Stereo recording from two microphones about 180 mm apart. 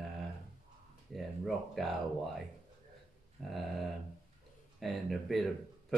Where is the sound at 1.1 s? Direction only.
Centre (ahead or behind).